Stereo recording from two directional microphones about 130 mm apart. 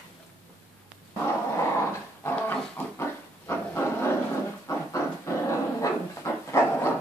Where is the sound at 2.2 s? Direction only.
15° left (ahead or behind).